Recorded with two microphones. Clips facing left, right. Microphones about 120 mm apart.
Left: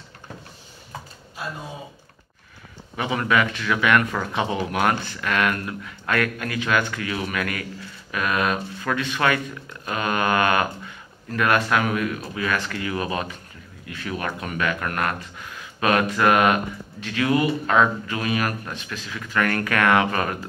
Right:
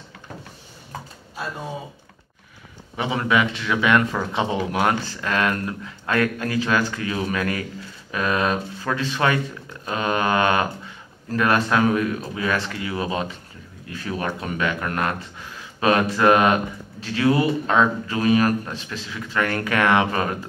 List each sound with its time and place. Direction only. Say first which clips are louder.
3.0 s speech: right 1 dB; 20° right (ahead or behind)